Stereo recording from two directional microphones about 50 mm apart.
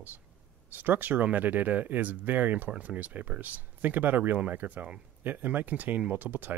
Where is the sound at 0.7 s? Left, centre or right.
Right.